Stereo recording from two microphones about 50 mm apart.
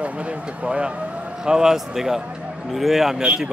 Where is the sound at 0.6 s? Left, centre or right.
Right; by 3.1 s centre.